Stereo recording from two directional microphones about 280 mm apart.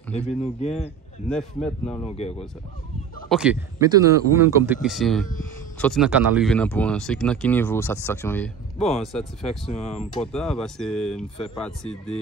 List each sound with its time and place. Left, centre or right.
0.1 s speech: left
1.3 s speech: centre
2.0 s speech: left
3.3 s speech: centre
4.8 s speech: centre
8.7 s speech: left
9.0 s speech: centre
9.7 s speech: left
10.2 s speech: centre